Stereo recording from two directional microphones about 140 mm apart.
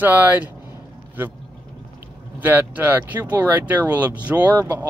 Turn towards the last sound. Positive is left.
turn(degrees=-15)  # may be behind; listen again after turning